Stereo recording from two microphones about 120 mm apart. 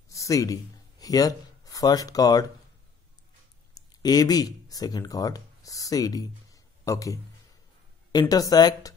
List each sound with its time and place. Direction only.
0.1 s speech: 25° left (ahead or behind)
4.0 s speech: 35° left (ahead or behind)